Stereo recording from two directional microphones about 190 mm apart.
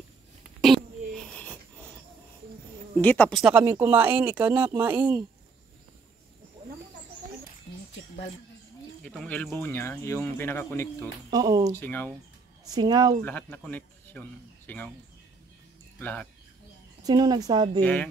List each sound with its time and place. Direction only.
0.6 s a sound: 5° left (ahead or behind)
3.0 s speech: 10° left (ahead or behind)
3.5 s speech: 10° right (ahead or behind)
9.0 s speech: 5° left (ahead or behind)
11.2 s speech: 20° right (ahead or behind)
11.7 s speech: 10° left (ahead or behind)
12.6 s speech: 20° right (ahead or behind)
13.2 s speech: 10° left (ahead or behind)
16.0 s speech: 10° left (ahead or behind)
17.0 s speech: 20° right (ahead or behind)